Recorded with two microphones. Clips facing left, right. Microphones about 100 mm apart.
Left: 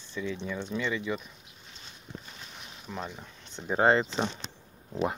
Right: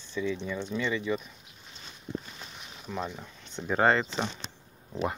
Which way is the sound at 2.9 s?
5° left (ahead or behind).